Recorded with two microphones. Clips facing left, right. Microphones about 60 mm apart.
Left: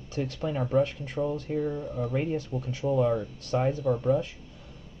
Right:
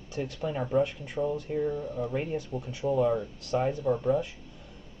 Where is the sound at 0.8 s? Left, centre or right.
Centre.